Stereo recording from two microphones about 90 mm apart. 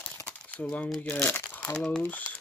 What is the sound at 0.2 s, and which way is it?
Crumpling, 15° left (ahead or behind).